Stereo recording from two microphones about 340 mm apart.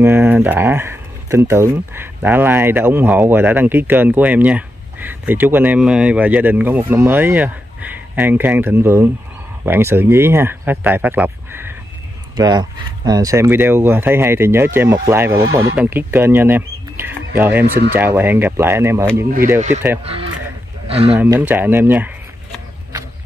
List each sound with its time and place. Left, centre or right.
0.0 s speech: centre
17.6 s speech: right
17.9 s speech: centre
21.1 s a sound: centre